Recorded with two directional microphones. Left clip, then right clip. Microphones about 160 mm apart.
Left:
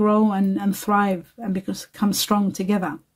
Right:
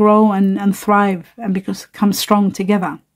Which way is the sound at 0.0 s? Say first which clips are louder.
Right 8 dB; 35° right (ahead or behind).